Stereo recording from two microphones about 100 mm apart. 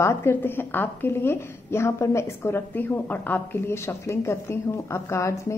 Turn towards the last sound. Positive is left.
turn(degrees=30)  # may be behind; listen again after turning